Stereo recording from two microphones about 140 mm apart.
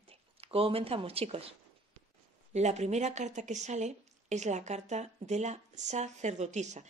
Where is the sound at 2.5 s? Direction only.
55° right (ahead or behind).